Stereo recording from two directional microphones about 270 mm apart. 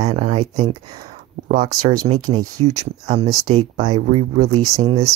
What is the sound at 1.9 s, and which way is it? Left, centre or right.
Speech, centre.